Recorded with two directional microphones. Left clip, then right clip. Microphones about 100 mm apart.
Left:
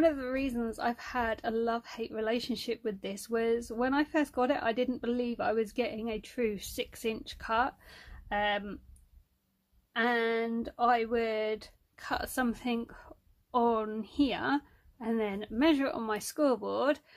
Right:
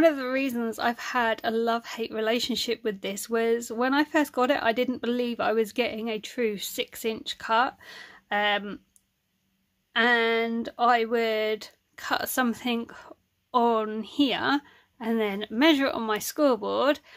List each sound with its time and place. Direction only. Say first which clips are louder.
0.0 s speech: right 6 dB; 25° right (ahead or behind)
9.9 s speech: right 7 dB; 10° right (ahead or behind)